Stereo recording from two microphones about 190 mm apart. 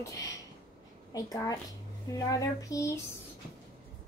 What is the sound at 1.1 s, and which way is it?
Speech, 20° left (ahead or behind).